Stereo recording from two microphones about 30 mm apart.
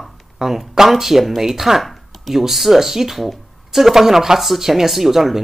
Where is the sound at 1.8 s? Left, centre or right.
Centre.